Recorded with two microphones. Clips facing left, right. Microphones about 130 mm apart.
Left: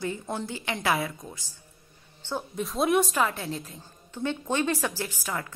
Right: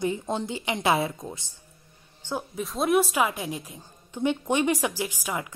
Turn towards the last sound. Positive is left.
turn(degrees=-15)  # may be behind; listen again after turning